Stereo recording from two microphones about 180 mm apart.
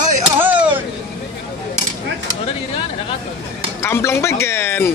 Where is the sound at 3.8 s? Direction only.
15° left (ahead or behind).